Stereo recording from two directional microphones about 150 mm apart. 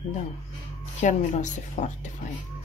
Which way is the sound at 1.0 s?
55° left (ahead or behind).